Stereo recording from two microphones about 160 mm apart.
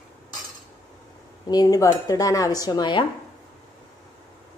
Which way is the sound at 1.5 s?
25° left (ahead or behind).